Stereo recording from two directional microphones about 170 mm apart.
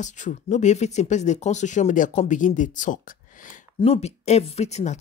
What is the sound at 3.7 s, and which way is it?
Speech, 40° left (ahead or behind).